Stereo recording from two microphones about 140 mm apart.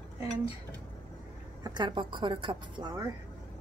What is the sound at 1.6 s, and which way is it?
Speech, 35° right (ahead or behind).